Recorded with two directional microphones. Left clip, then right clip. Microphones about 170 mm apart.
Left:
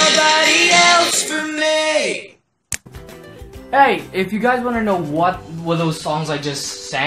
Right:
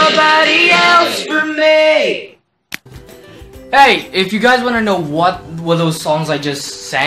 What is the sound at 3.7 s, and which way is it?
Speech, 5° left (ahead or behind).